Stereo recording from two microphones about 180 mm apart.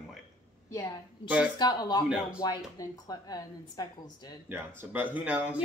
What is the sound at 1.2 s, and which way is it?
Speech, 30° left (ahead or behind).